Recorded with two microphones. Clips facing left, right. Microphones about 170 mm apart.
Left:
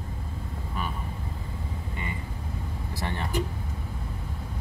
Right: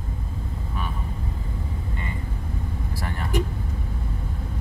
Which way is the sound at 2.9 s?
25° left (ahead or behind).